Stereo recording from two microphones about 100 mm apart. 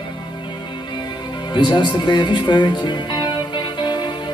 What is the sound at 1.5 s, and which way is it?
Music, 50° left (ahead or behind).